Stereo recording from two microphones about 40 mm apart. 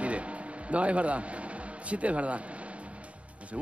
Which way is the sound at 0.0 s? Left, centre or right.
Right.